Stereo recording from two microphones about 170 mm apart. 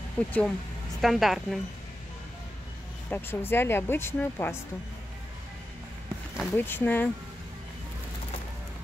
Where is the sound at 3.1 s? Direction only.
10° left (ahead or behind).